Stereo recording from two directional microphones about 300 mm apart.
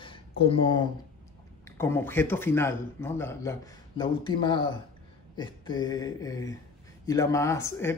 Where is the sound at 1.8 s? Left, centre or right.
Centre.